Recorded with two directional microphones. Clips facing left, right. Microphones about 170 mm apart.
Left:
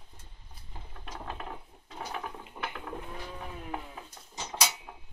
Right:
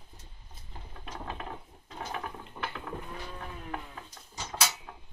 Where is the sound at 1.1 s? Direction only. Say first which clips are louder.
Right 1 dB; centre (ahead or behind).